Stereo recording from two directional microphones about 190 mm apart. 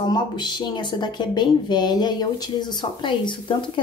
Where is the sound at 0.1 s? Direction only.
25° left (ahead or behind).